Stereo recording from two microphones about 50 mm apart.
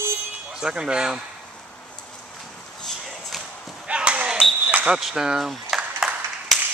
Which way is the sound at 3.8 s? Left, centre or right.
Right.